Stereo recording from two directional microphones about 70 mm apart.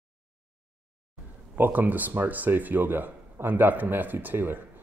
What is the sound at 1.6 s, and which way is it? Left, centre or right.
Speech, right.